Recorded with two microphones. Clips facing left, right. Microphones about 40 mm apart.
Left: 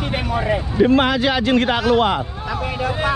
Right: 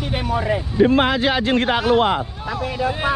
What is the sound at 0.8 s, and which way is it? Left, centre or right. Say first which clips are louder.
Speech: left 1 dB; left.